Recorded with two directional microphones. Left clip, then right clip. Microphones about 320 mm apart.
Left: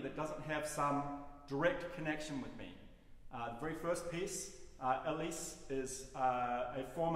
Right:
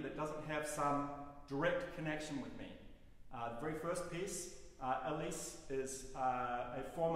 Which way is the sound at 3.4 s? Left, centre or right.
Centre.